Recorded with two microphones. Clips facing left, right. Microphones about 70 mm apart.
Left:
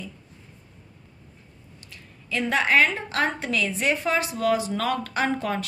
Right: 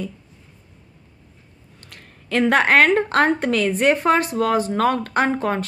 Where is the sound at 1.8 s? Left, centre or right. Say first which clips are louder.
Right 4 dB; right.